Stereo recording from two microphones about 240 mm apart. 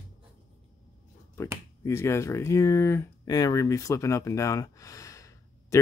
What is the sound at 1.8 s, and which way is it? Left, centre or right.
Speech, centre.